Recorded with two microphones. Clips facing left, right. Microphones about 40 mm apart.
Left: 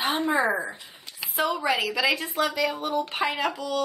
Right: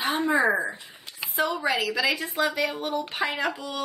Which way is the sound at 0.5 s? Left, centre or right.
Centre.